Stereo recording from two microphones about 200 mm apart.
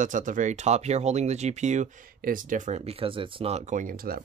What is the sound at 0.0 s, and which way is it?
Speech, 40° right (ahead or behind).